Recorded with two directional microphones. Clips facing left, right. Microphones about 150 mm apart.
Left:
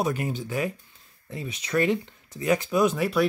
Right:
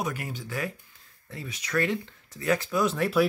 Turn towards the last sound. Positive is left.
turn(degrees=5)  # may be behind; listen again after turning